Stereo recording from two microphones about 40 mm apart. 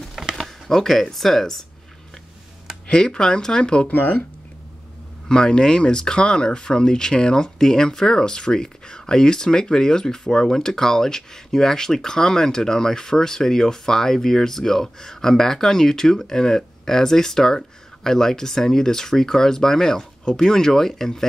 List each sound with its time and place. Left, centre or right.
0.1 s a sound: centre
0.4 s speech: centre
2.9 s speech: left
3.9 s speech: left
5.3 s speech: centre